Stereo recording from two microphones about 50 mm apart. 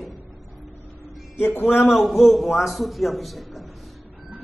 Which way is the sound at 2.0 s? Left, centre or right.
Centre.